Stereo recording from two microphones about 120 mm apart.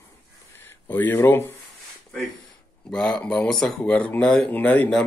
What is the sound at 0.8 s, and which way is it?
Speech, 15° left (ahead or behind).